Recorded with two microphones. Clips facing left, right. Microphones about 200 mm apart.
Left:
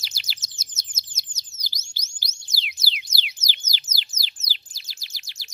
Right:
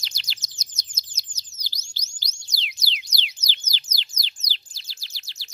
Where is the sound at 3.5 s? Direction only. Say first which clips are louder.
Even; 10° left (ahead or behind).